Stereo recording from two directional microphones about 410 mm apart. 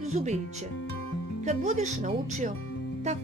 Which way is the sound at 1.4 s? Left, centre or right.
Centre.